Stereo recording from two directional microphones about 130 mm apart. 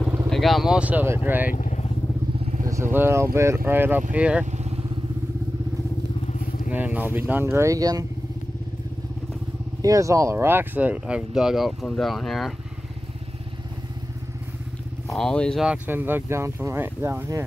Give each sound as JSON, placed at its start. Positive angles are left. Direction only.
{"t": 0.3, "sound": "speech", "side_deg": 0}
{"t": 1.5, "sound": "vehicle", "side_deg": 75}
{"t": 2.4, "sound": "vehicle", "side_deg": -70}
{"t": 2.7, "sound": "speech", "side_deg": -20}
{"t": 6.7, "sound": "speech", "side_deg": -15}
{"t": 9.8, "sound": "speech", "side_deg": -25}
{"t": 15.0, "sound": "speech", "side_deg": 5}
{"t": 15.6, "sound": "speech", "side_deg": -10}